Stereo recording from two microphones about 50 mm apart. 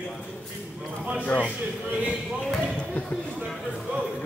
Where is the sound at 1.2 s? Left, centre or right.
Left.